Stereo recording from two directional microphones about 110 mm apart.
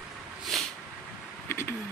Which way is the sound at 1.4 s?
25° left (ahead or behind).